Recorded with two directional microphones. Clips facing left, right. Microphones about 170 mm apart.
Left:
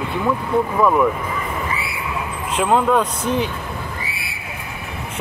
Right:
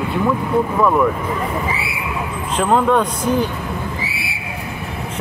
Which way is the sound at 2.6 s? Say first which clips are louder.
Right 1 dB; 5° left (ahead or behind).